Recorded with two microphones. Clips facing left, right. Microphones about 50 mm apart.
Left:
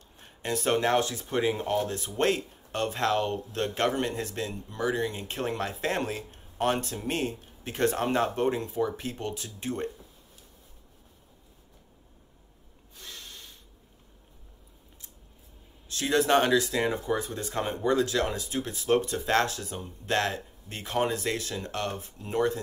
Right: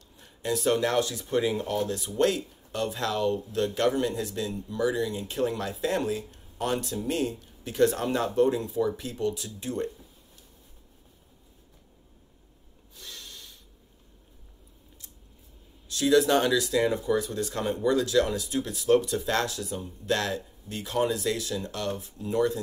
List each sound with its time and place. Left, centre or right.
0.1 s speech: left
12.9 s snort: left
15.9 s speech: left